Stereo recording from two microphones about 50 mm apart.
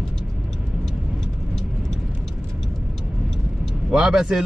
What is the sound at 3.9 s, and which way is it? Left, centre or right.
Speech, centre.